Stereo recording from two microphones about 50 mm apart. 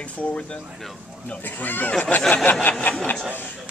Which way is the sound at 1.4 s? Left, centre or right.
Left.